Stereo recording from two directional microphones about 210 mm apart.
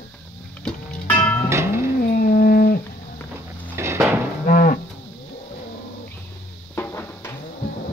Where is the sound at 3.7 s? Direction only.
10° right (ahead or behind).